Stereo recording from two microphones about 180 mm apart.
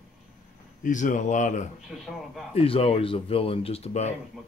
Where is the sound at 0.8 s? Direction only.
45° left (ahead or behind).